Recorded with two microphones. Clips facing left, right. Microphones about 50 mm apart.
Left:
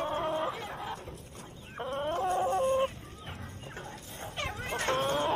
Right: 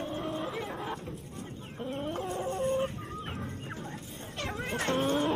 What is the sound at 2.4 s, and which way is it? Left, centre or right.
Chicken, left.